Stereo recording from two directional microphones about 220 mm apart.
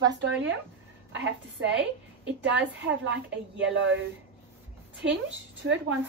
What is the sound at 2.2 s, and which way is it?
Speech, 55° right (ahead or behind).